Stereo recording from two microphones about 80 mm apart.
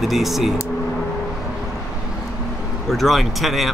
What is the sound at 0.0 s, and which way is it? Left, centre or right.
Speech, centre.